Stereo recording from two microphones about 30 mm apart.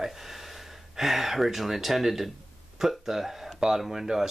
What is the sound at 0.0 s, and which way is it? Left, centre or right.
Speech, centre.